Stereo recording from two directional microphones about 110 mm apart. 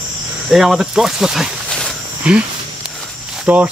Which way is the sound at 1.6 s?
5° left (ahead or behind).